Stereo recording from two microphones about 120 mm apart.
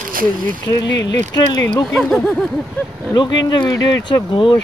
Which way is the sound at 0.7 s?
30° left (ahead or behind).